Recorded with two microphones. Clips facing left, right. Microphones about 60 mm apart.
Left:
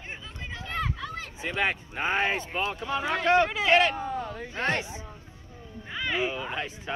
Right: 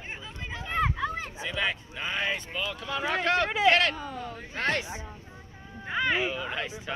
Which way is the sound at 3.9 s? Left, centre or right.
Left.